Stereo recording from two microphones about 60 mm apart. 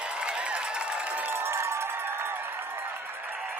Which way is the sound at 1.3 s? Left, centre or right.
Right.